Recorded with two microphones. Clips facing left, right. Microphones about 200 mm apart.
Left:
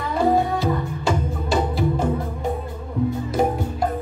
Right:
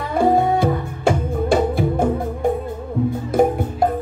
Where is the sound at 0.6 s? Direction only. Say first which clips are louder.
Right 3 dB; 55° right (ahead or behind).